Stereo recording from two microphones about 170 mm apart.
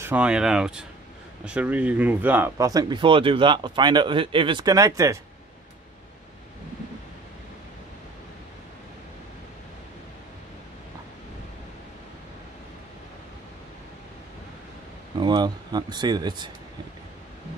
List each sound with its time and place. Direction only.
0.0 s speech: 10° right (ahead or behind)
15.1 s speech: 25° right (ahead or behind)